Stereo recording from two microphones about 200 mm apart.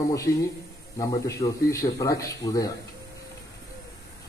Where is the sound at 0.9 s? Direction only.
15° left (ahead or behind).